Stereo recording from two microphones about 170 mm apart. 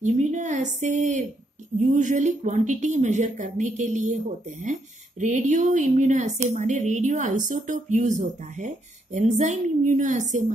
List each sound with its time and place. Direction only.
0.0 s speech: 45° right (ahead or behind)